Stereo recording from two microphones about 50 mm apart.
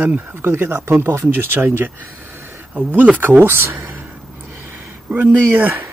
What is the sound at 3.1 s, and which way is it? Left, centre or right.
Speech, right.